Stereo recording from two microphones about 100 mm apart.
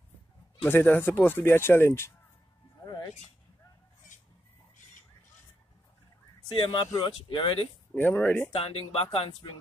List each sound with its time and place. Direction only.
0.7 s speech: 20° left (ahead or behind)
6.5 s speech: 55° left (ahead or behind)
7.9 s speech: 20° left (ahead or behind)
8.5 s speech: 75° left (ahead or behind); by 9.6 s 60° left (ahead or behind)